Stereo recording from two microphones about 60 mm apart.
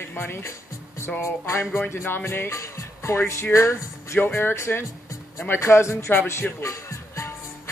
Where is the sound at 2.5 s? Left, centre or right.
Left.